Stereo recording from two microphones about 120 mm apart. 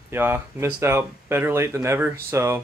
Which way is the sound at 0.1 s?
20° right (ahead or behind).